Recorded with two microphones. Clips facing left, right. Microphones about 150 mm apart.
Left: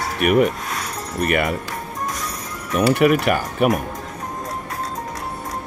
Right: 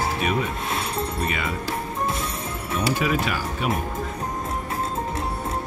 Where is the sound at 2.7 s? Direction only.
65° left (ahead or behind).